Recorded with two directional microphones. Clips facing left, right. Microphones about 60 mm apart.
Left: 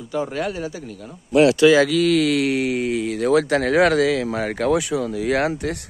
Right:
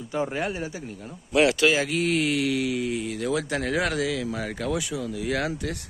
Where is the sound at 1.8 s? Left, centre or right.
Left.